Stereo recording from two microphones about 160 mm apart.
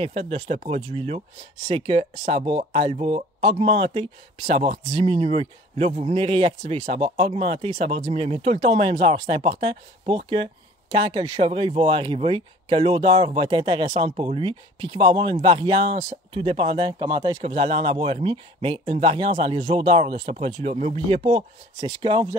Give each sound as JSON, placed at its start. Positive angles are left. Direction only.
{"t": 0.0, "sound": "speech", "side_deg": -40}